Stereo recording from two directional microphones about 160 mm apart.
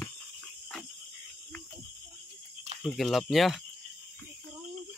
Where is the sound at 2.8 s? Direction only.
Centre (ahead or behind).